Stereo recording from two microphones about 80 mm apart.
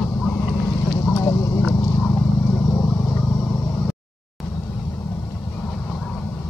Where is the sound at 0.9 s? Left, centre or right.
Left.